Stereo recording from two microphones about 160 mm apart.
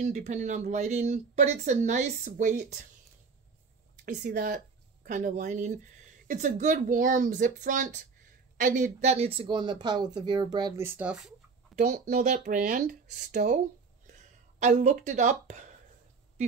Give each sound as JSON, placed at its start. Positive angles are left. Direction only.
{"t": 0.0, "sound": "speech", "side_deg": -50}
{"t": 4.0, "sound": "speech", "side_deg": -55}
{"t": 10.9, "sound": "speech", "side_deg": -10}
{"t": 11.7, "sound": "speech", "side_deg": -50}
{"t": 14.0, "sound": "a sound", "side_deg": -50}